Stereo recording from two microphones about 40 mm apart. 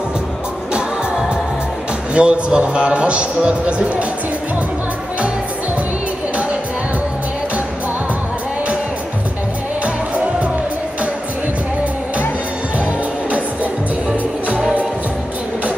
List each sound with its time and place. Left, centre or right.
2.1 s a man's voice: right